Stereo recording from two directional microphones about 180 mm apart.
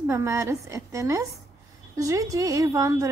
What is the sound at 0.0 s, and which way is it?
A woman's voice, 15° right (ahead or behind).